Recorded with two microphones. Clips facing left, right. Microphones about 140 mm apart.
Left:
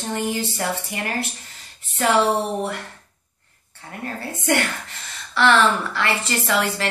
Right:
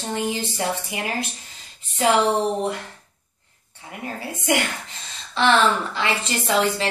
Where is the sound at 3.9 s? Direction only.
10° right (ahead or behind).